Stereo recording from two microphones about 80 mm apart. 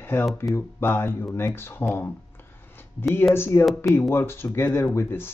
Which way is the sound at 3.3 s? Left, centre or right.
Left.